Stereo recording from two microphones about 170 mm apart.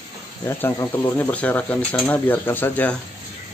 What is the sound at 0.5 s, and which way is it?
Speech, 15° left (ahead or behind).